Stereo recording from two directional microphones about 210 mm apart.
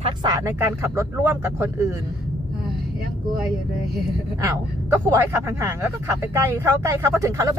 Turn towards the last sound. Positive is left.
turn(degrees=-15)  # may be behind; listen again after turning